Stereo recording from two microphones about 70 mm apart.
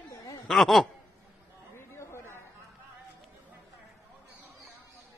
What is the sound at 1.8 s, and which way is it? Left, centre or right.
Chatter, left.